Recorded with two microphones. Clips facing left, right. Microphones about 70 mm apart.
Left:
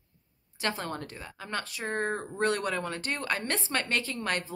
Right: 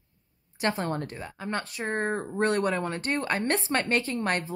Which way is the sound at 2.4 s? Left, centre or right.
Right.